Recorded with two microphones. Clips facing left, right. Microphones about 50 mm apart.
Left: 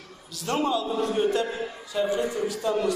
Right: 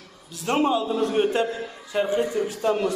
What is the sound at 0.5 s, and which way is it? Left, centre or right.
A man's voice, right.